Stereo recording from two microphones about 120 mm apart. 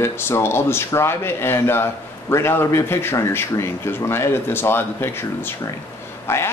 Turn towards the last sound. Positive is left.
turn(degrees=20)  # may be behind; listen again after turning